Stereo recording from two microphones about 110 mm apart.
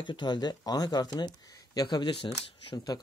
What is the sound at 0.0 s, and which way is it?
Speech, 45° left (ahead or behind).